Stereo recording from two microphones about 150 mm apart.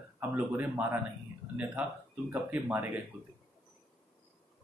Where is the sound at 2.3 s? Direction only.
15° right (ahead or behind).